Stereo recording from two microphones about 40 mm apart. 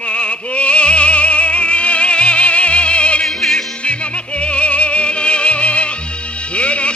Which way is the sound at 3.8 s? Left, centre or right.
Left.